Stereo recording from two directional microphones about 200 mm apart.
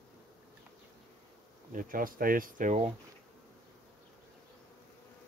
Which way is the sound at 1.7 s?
45° right (ahead or behind).